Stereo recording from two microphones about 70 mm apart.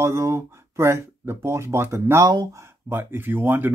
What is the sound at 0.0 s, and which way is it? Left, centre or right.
Speech, right.